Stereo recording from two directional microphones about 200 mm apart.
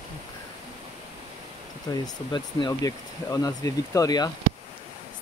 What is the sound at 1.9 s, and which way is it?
Speech, 20° left (ahead or behind).